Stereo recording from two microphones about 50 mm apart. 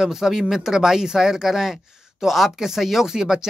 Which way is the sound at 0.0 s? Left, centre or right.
Centre.